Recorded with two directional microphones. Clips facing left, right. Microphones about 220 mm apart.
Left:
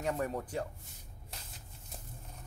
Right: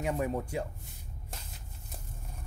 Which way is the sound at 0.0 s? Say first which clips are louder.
Right 3 dB; 10° right (ahead or behind).